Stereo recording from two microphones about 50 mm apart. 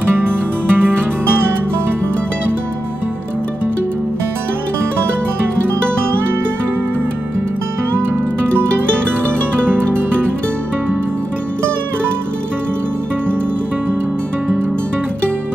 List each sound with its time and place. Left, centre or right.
0.1 s music: right